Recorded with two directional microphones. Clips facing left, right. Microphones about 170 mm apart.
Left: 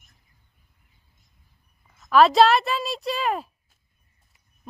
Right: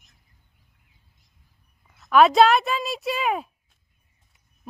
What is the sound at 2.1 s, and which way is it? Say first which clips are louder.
Speech: even; centre (ahead or behind).